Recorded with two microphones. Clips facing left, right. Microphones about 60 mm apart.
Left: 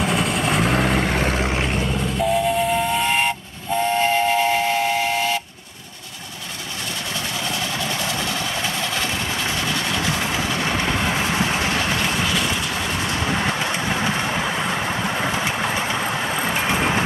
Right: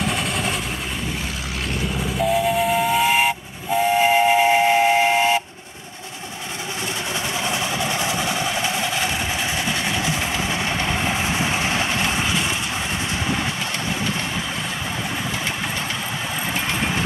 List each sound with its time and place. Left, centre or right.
0.0 s vehicle: centre
0.6 s vehicle: left
2.0 s steam whistle: centre
3.9 s train: centre
8.6 s train: centre
11.3 s vehicle: right